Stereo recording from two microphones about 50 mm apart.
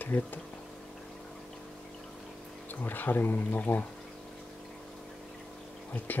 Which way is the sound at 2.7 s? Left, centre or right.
Left.